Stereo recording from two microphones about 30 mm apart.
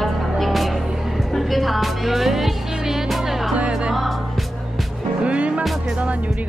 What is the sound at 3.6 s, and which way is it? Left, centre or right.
Music, right.